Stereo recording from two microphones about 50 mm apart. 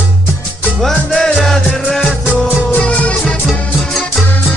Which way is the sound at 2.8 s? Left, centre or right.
Left.